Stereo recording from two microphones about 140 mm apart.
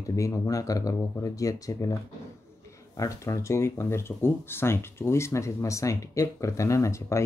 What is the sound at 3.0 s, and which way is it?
Speech, 25° left (ahead or behind).